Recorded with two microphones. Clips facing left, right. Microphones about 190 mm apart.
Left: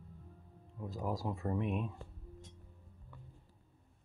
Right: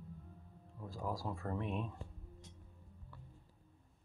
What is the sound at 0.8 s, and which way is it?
Speech, 20° left (ahead or behind).